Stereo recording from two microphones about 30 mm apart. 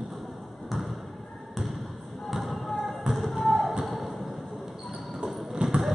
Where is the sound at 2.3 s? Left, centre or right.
Centre.